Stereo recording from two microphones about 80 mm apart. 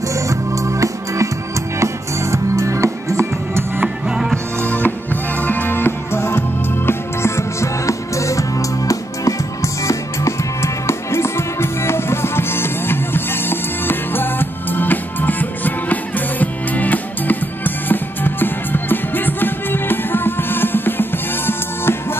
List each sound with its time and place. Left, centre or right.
0.1 s music: right
2.3 s music: right
4.6 s music: left